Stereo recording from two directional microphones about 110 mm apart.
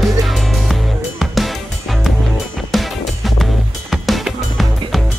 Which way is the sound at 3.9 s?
Centre (ahead or behind).